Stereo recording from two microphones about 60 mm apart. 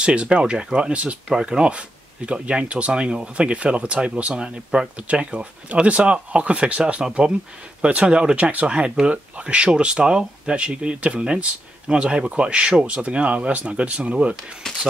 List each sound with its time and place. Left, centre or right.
0.0 s speech: centre